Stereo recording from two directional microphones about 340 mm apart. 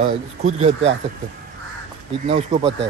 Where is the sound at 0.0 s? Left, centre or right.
Centre.